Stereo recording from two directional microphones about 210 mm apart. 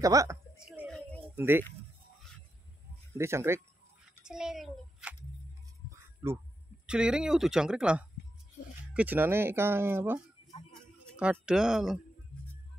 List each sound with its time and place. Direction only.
0.0 s speech: 15° right (ahead or behind)
0.7 s music: centre (ahead or behind)
1.3 s speech: 10° right (ahead or behind)
3.2 s speech: 10° right (ahead or behind)
4.2 s a sound: 5° right (ahead or behind)
6.9 s speech: 5° right (ahead or behind)
10.7 s music: centre (ahead or behind)